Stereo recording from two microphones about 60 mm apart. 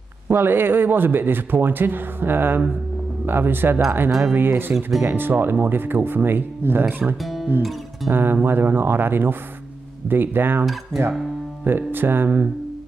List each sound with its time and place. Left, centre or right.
0.3 s speech: right
7.2 s guitar: centre
8.1 s speech: right
10.6 s cutlery: centre
11.6 s speech: right